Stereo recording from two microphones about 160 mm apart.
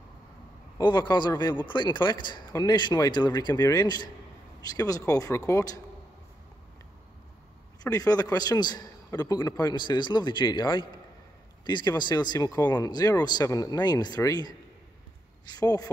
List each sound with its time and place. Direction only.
0.7 s a man's voice: 25° left (ahead or behind)
7.8 s a man's voice: 25° left (ahead or behind)